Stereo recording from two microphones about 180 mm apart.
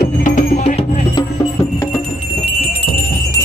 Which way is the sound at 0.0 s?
50° left (ahead or behind).